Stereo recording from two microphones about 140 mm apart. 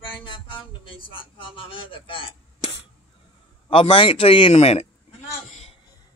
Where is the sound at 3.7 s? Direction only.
40° left (ahead or behind).